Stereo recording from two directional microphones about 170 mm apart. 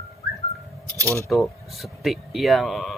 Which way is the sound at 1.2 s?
Centre (ahead or behind).